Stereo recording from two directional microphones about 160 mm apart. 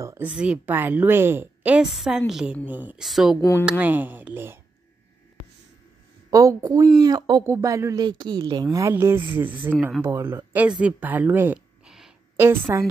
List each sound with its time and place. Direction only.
0.0 s a woman's voice: 20° right (ahead or behind)
0.3 s a woman's voice: 5° right (ahead or behind)
3.3 s speech: 15° left (ahead or behind)
3.8 s a woman's voice: 10° right (ahead or behind)
6.3 s a woman's voice: 20° right (ahead or behind)